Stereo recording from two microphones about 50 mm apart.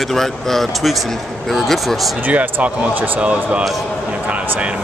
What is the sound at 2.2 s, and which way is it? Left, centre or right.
Speech, right.